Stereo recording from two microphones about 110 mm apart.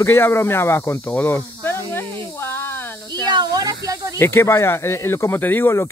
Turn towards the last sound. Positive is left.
turn(degrees=25)  # may be behind; listen again after turning